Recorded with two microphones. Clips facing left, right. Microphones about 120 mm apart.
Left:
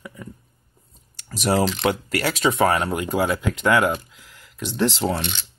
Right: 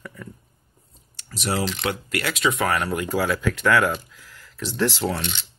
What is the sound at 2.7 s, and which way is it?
Speech, 25° left (ahead or behind).